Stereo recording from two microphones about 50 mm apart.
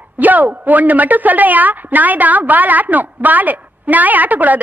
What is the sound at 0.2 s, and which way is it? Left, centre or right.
A woman's voice, right.